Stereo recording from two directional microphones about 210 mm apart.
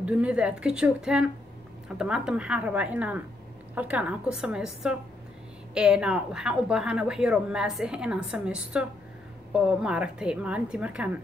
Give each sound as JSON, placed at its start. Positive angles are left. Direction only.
{"t": 0.0, "sound": "a woman's voice", "side_deg": -5}